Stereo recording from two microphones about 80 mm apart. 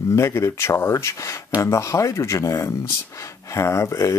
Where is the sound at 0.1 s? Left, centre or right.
Left.